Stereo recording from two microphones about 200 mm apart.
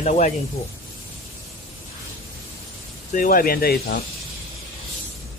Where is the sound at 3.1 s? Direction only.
45° left (ahead or behind).